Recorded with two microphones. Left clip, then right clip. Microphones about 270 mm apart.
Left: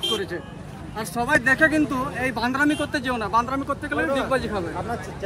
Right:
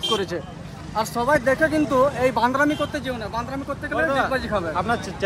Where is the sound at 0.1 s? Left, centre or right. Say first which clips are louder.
Right 3 dB; centre.